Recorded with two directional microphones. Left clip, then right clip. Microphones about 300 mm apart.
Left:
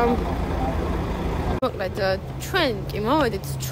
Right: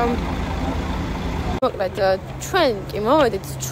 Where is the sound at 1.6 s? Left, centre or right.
Centre.